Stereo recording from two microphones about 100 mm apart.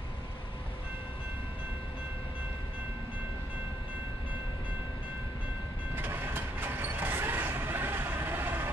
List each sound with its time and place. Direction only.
5.9 s train: 20° right (ahead or behind)